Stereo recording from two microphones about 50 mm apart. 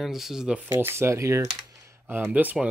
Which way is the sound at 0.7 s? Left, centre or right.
Right.